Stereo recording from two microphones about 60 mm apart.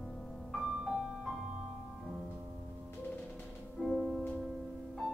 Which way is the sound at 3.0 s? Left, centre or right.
Left.